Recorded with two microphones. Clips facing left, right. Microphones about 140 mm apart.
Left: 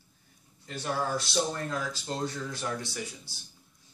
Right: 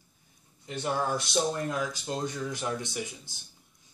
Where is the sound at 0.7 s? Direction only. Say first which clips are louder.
Right 2 dB; 20° right (ahead or behind).